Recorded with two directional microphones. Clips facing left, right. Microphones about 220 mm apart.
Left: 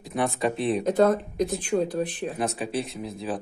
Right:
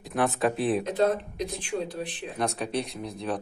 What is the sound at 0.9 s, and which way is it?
Speech, 45° left (ahead or behind).